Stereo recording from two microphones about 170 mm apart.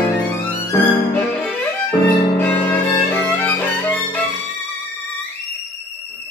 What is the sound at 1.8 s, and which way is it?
Violin, 10° left (ahead or behind).